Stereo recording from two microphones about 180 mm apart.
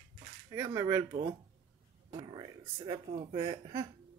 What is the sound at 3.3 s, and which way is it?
Speech, 20° right (ahead or behind).